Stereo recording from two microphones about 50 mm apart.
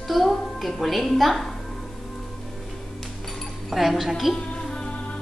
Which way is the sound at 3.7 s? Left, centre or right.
Centre.